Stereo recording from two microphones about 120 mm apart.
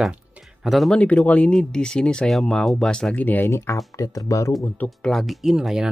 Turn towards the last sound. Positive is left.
turn(degrees=-5)  # may be behind; listen again after turning